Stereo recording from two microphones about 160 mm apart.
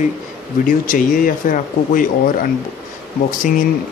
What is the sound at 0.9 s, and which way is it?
Speech, 60° left (ahead or behind).